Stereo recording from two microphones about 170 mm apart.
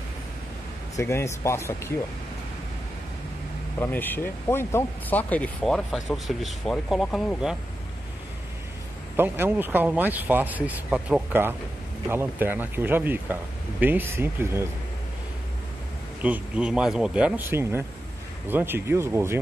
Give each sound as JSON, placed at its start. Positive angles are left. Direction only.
{"t": 0.9, "sound": "speech", "side_deg": 15}
{"t": 3.8, "sound": "speech", "side_deg": 10}
{"t": 9.1, "sound": "speech", "side_deg": -10}
{"t": 16.2, "sound": "speech", "side_deg": -5}